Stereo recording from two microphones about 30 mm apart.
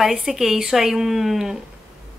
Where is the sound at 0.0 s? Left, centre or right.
Centre.